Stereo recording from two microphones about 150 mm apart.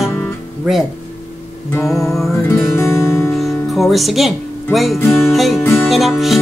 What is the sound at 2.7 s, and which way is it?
Music, 20° left (ahead or behind).